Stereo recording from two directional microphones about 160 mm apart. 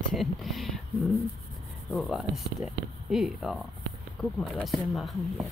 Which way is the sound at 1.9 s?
Centre (ahead or behind).